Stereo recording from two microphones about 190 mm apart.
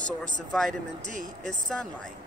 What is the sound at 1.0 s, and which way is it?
Speech, 40° right (ahead or behind).